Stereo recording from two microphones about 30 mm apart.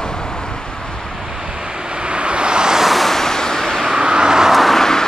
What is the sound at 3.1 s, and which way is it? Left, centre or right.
Vehicle, centre.